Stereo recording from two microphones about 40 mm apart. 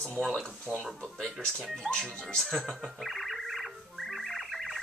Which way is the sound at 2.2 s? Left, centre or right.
Centre.